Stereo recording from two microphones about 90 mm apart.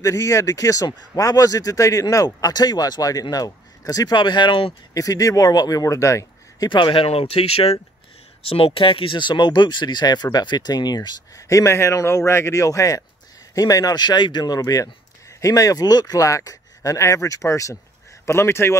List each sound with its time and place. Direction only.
0.0 s speech: 35° left (ahead or behind); by 4.7 s 70° left (ahead or behind)
4.9 s speech: 40° left (ahead or behind)
6.7 s speech: 70° left (ahead or behind); by 18.8 s 30° left (ahead or behind)